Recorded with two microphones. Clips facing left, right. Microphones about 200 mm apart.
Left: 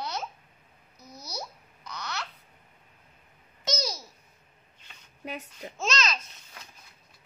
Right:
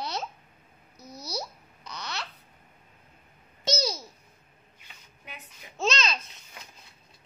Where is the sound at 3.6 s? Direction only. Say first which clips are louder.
Right 3 dB; 30° right (ahead or behind).